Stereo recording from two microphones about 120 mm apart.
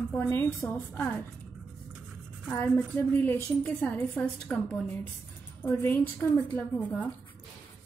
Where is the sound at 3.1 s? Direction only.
15° left (ahead or behind).